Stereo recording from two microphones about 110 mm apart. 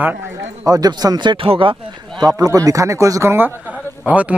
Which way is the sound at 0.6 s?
35° right (ahead or behind).